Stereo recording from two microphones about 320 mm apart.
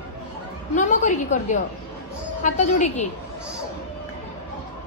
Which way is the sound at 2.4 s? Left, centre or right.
Left.